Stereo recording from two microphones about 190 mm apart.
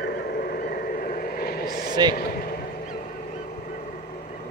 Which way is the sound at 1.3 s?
55° left (ahead or behind).